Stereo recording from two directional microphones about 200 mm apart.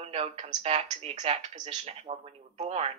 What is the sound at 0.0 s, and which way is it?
A woman's voice, 30° right (ahead or behind).